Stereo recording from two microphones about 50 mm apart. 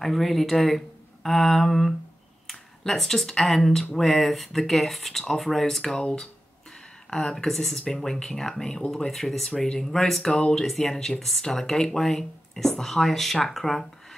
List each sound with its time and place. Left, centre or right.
0.0 s speech: centre
5.9 s speech: centre